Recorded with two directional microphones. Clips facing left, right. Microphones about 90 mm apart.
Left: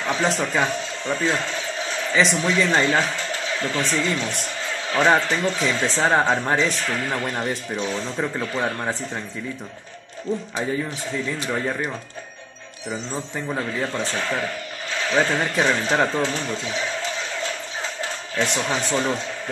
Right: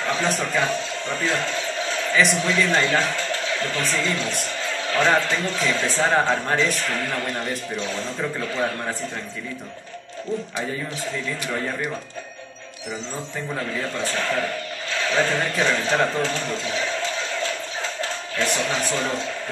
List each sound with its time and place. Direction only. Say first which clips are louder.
0.0 s a man's voice: left 1 dB; 20° left (ahead or behind)
13.7 s a man's voice: left 1 dB; 25° left (ahead or behind)
18.0 s a man's voice: left 1 dB; 25° left (ahead or behind)